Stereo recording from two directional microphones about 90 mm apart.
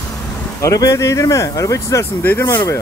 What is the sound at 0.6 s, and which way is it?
Speech, 35° left (ahead or behind).